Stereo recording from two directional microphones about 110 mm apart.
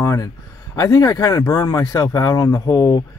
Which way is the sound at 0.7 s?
35° left (ahead or behind).